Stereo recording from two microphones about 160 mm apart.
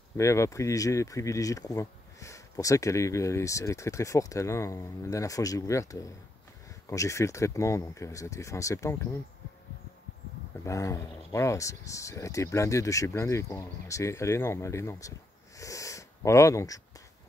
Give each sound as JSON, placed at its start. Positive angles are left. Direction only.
{"t": 0.2, "sound": "speech", "side_deg": 20}
{"t": 10.6, "sound": "speech", "side_deg": 20}